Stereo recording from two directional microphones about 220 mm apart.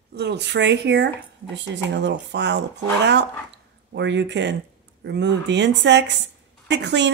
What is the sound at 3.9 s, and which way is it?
Speech, 55° right (ahead or behind).